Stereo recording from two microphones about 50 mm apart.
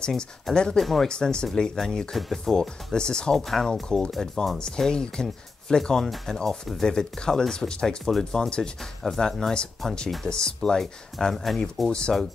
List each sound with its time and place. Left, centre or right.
0.7 s speech: centre
1.0 s speech: centre
9.0 s speech: centre